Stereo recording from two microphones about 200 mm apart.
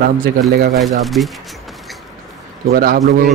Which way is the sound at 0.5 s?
55° right (ahead or behind).